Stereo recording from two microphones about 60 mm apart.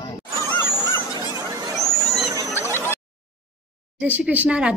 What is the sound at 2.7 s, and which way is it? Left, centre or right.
Music, right.